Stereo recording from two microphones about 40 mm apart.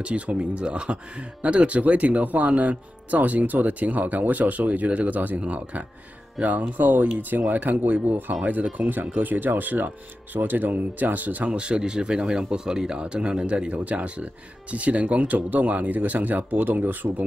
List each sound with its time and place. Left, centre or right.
0.0 s speech: right
11.5 s speech: right